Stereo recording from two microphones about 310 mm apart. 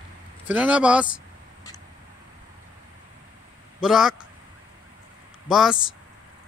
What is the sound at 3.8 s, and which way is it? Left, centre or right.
Speech, centre.